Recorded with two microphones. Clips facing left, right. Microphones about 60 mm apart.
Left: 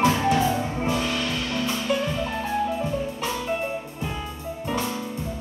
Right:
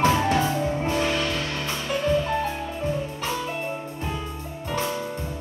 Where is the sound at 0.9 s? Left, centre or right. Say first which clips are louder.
Right 1 dB; right.